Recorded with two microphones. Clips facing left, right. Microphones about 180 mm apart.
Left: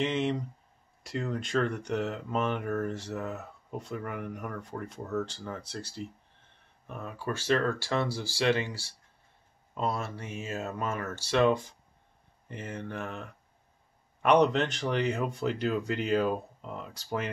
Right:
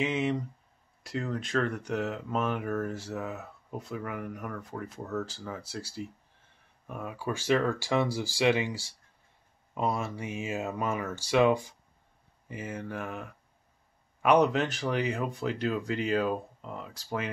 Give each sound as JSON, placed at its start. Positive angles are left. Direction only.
{"t": 0.0, "sound": "speech", "side_deg": -5}